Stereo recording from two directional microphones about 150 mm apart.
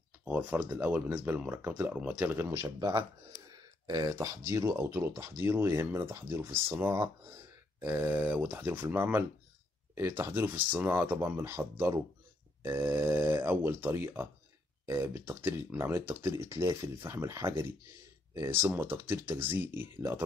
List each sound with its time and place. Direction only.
0.2 s speech: 10° right (ahead or behind)
3.5 s a sound: 25° right (ahead or behind)
4.5 s speech: 20° right (ahead or behind)